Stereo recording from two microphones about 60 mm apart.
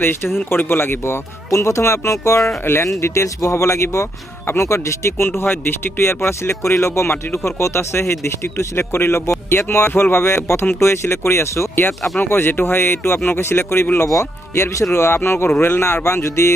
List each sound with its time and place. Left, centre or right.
0.0 s speech: left
2.6 s speech: left
2.9 s speech: left
12.2 s speech: left
14.5 s speech: left
15.1 s speech: left